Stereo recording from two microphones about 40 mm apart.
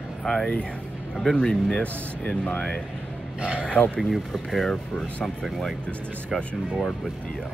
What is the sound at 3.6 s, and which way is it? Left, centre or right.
Speech, left.